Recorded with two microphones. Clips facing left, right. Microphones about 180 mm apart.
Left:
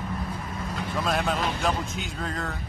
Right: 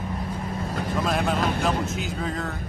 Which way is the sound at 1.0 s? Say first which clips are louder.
Right 2 dB; centre (ahead or behind).